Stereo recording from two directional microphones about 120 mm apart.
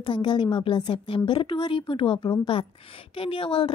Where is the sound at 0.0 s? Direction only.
40° left (ahead or behind).